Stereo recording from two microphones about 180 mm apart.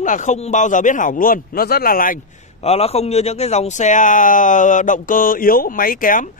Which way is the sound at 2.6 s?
35° left (ahead or behind).